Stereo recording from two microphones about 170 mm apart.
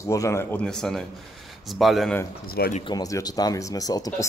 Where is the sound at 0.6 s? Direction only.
5° left (ahead or behind).